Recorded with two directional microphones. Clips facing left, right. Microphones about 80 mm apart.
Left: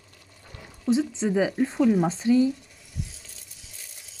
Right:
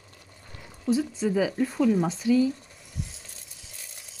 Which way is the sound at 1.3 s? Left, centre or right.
Left.